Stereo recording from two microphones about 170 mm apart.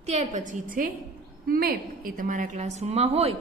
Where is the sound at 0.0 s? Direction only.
45° right (ahead or behind).